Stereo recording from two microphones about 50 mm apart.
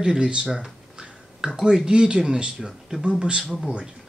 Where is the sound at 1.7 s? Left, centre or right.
Centre.